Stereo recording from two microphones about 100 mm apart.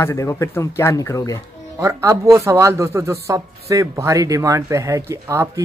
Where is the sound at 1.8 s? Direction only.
30° right (ahead or behind).